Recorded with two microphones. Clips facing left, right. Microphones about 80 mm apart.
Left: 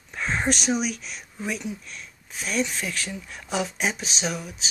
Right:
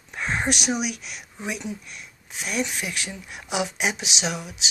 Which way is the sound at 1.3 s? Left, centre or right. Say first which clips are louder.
Left 1 dB; centre.